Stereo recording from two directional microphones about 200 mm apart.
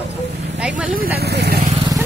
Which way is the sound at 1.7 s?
25° right (ahead or behind).